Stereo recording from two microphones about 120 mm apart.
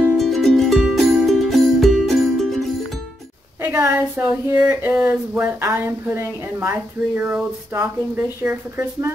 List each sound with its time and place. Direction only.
0.2 s music: centre (ahead or behind)
3.6 s a sound: 20° right (ahead or behind)
5.4 s speech: 20° right (ahead or behind)
6.7 s speech: 10° right (ahead or behind)